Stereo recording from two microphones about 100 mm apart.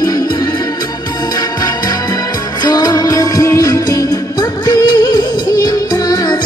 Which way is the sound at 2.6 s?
40° left (ahead or behind).